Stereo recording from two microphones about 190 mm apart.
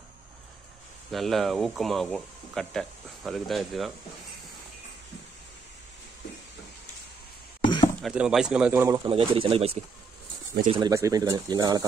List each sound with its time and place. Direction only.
1.1 s speech: centre (ahead or behind)
7.6 s a sound: 25° left (ahead or behind)
8.0 s speech: 5° right (ahead or behind)
8.8 s speech: 15° right (ahead or behind)
9.1 s speech: 25° right (ahead or behind)
10.7 s speech: 20° right (ahead or behind)